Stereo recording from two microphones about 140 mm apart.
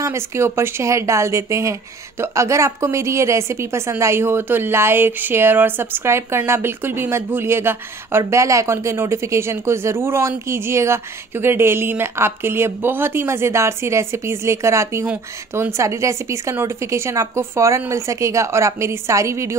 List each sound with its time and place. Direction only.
0.0 s speech: 20° right (ahead or behind)